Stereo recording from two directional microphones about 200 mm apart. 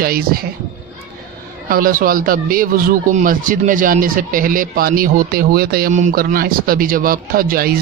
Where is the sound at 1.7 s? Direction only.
45° right (ahead or behind).